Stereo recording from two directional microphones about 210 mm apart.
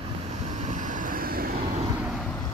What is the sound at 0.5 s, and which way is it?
Vehicle, 35° right (ahead or behind).